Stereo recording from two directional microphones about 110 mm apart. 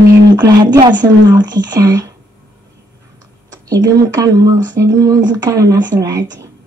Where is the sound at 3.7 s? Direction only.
35° right (ahead or behind).